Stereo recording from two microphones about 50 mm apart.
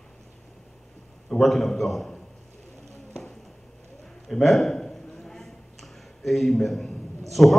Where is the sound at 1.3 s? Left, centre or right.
Centre.